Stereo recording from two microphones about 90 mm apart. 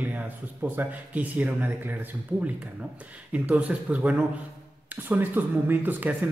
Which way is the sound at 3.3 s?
15° right (ahead or behind).